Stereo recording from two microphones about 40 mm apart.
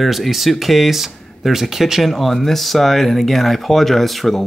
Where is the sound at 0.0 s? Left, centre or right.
Centre.